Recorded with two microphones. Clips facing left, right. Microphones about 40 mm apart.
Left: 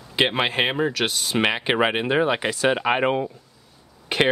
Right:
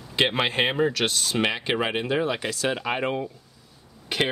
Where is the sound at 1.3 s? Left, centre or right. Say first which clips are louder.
Left 3 dB; left.